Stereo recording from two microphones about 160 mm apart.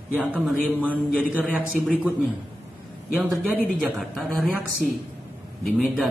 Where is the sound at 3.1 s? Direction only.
Centre (ahead or behind).